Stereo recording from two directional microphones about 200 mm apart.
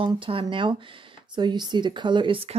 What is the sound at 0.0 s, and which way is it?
Speech, 25° right (ahead or behind).